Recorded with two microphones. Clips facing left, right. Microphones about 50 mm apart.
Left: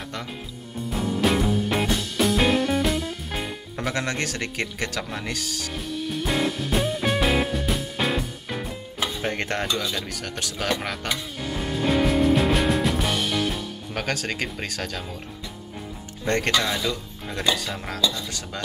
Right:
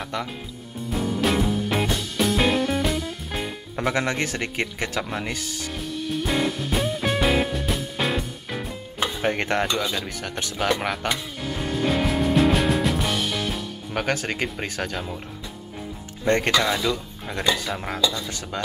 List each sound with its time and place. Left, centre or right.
0.9 s music: centre
3.7 s speech: centre
5.7 s music: centre
9.2 s speech: centre
11.1 s music: centre
14.1 s speech: centre
16.3 s speech: centre